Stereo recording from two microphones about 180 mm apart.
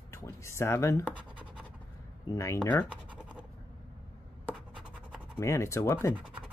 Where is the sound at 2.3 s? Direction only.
15° left (ahead or behind).